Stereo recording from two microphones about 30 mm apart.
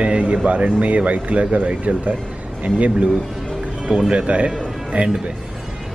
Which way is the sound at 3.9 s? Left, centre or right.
Right.